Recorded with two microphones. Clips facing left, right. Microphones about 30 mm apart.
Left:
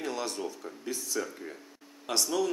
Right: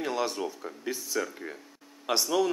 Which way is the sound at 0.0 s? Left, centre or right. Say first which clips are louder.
Right 4 dB; centre.